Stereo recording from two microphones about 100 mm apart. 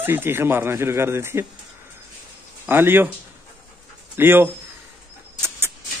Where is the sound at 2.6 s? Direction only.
20° right (ahead or behind).